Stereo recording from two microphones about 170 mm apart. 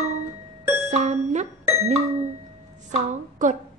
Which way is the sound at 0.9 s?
45° right (ahead or behind).